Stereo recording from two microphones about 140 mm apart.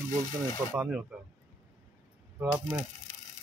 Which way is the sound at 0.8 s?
5° right (ahead or behind).